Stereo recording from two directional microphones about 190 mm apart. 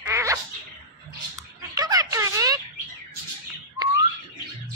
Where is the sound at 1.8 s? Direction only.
20° right (ahead or behind).